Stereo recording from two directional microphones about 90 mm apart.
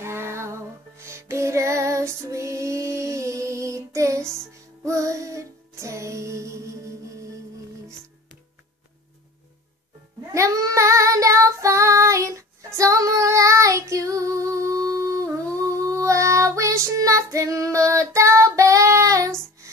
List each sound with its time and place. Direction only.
0.0 s music: 30° right (ahead or behind)
10.2 s child singing: 40° right (ahead or behind)